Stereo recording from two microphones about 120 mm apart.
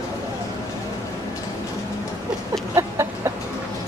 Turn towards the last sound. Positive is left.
turn(degrees=-25)  # may be behind; listen again after turning